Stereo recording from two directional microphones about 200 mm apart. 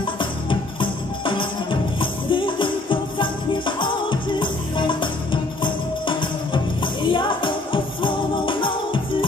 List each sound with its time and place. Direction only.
0.0 s music: 25° left (ahead or behind)